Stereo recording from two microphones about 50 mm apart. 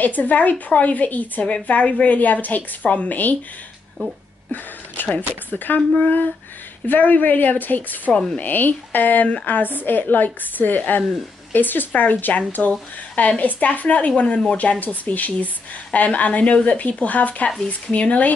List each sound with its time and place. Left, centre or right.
0.0 s a woman's voice: left
8.1 s speech: centre
8.4 s a woman's voice: left